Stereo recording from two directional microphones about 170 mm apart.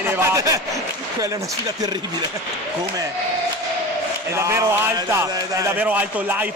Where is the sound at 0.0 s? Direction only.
20° right (ahead or behind).